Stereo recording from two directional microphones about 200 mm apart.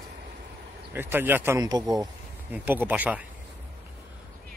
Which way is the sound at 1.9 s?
20° right (ahead or behind).